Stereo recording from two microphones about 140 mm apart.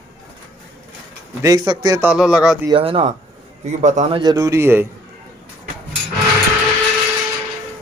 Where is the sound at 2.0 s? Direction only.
5° right (ahead or behind).